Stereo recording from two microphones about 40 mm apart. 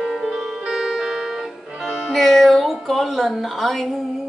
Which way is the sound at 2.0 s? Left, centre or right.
Centre.